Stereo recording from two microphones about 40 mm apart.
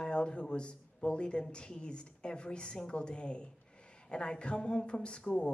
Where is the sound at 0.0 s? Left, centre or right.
Left.